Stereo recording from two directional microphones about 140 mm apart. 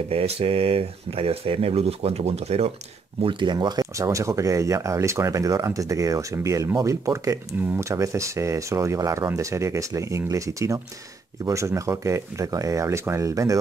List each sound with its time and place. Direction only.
0.1 s speech: 45° right (ahead or behind)
3.2 s speech: 35° right (ahead or behind)